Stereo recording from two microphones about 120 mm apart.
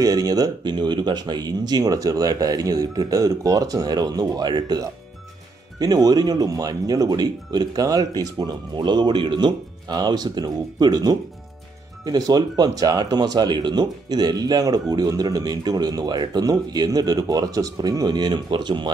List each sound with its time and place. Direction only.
0.0 s speech: 30° right (ahead or behind)